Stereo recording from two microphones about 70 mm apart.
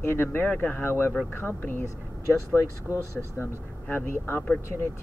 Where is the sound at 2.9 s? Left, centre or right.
Left.